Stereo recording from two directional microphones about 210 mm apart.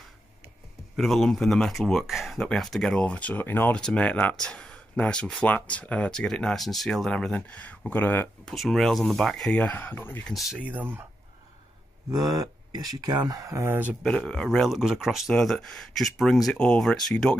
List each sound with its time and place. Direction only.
0.9 s speech: centre (ahead or behind)
12.1 s speech: 20° right (ahead or behind)
14.0 s speech: 5° left (ahead or behind)